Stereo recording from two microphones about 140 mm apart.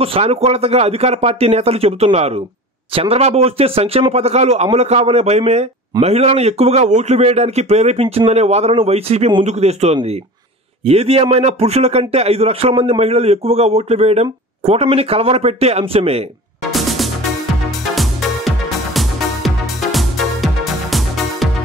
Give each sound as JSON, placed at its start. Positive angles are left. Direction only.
{"t": 0.0, "sound": "a man's voice", "side_deg": -45}
{"t": 16.7, "sound": "music", "side_deg": 0}
{"t": 18.9, "sound": "music", "side_deg": 0}